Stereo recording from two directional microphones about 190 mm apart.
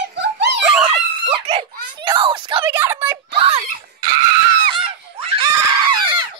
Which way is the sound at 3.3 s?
30° right (ahead or behind).